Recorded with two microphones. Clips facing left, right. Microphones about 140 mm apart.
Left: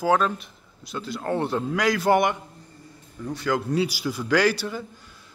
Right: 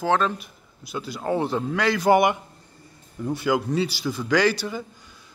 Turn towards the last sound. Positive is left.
turn(degrees=0)  # may be behind; listen again after turning